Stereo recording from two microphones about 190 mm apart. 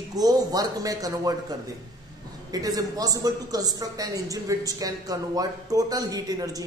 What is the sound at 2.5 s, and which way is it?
A man's voice, 20° right (ahead or behind).